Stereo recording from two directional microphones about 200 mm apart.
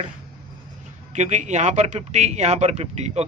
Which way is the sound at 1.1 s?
35° right (ahead or behind).